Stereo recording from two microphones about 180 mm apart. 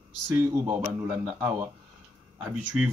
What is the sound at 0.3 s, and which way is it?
Speech, 10° right (ahead or behind).